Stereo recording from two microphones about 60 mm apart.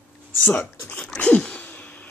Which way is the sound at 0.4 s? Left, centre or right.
Left.